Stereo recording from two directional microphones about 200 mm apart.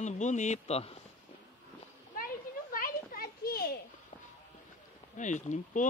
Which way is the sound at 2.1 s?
45° left (ahead or behind).